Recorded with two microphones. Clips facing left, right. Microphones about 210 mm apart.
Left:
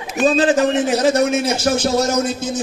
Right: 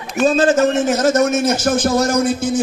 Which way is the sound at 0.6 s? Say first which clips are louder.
Right 1 dB; 45° right (ahead or behind).